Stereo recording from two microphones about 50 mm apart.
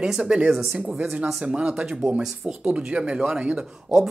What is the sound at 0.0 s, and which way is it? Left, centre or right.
Speech, centre.